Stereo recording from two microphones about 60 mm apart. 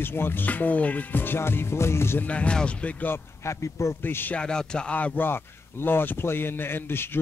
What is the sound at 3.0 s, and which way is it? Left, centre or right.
Speech, left.